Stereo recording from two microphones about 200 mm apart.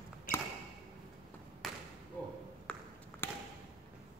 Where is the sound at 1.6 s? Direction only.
Centre (ahead or behind).